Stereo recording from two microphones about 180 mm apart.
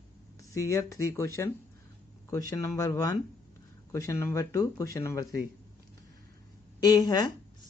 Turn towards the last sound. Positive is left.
turn(degrees=20)  # may be behind; listen again after turning